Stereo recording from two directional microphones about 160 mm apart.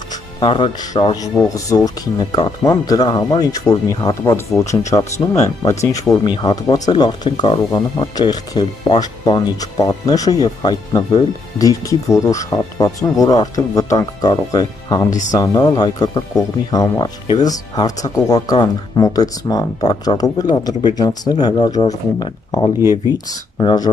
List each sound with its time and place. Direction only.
0.1 s speech: 30° left (ahead or behind)
5.1 s speech: 45° left (ahead or behind)
5.6 s speech: 20° left (ahead or behind)
15.0 s speech: 50° left (ahead or behind)
15.3 s speech: 25° left (ahead or behind)
22.8 s speech: 15° right (ahead or behind)
23.1 s speech: 25° left (ahead or behind)